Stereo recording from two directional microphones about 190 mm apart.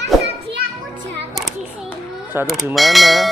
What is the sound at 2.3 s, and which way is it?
Music, 10° right (ahead or behind).